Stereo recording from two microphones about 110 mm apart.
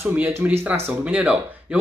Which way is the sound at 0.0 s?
20° right (ahead or behind).